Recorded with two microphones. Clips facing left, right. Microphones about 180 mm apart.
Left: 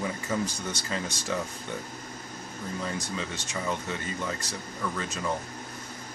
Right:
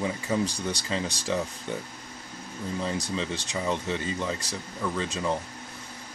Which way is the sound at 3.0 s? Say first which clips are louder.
Right 3 dB; 35° right (ahead or behind).